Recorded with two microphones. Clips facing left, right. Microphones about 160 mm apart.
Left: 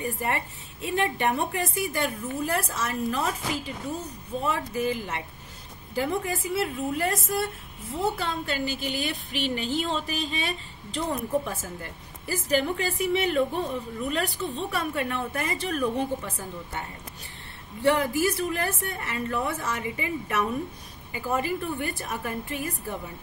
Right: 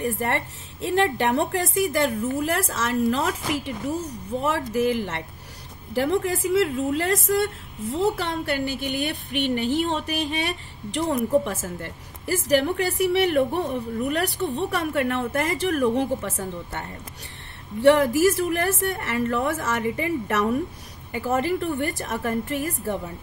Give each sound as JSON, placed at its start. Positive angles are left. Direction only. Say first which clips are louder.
{"t": 0.0, "sound": "a woman's voice", "louder": "right 4 dB", "side_deg": -80}
{"t": 8.0, "sound": "a woman's voice", "louder": "right 4 dB", "side_deg": -80}
{"t": 15.8, "sound": "a woman's voice", "louder": "right 3 dB", "side_deg": -75}
{"t": 17.8, "sound": "a woman's voice", "louder": "right 6 dB", "side_deg": -75}